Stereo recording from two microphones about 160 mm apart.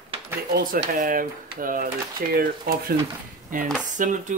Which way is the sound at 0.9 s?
55° right (ahead or behind).